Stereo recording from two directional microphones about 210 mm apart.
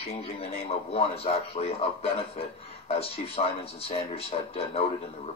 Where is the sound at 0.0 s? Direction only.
30° left (ahead or behind).